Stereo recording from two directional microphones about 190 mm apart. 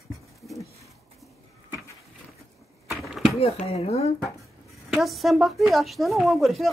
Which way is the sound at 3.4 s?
30° left (ahead or behind).